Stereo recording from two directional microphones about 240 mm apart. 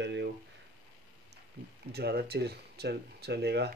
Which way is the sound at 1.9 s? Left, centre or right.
Right.